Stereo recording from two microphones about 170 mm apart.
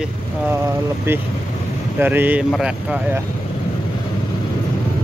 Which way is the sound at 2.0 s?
10° right (ahead or behind).